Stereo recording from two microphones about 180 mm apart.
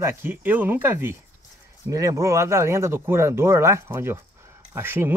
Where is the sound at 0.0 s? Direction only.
15° right (ahead or behind).